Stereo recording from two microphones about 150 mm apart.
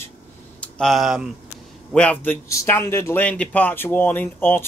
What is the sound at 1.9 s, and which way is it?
Speech, 10° left (ahead or behind).